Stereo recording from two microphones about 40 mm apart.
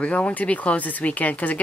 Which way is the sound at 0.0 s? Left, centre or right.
Left.